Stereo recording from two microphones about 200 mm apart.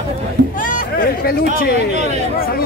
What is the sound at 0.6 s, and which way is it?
Music, 40° left (ahead or behind).